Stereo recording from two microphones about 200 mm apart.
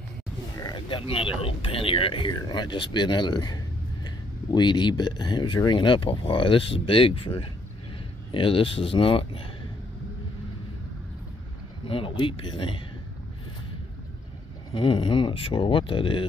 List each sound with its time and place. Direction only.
0.6 s speech: 20° left (ahead or behind)
11.9 s speech: 25° left (ahead or behind)
14.7 s speech: 25° left (ahead or behind)